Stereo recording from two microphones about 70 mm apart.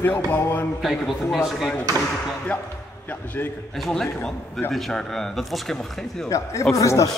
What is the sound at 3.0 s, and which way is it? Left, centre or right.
Speech, left.